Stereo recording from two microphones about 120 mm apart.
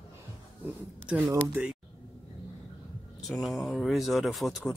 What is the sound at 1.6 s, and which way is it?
Speech, 15° right (ahead or behind).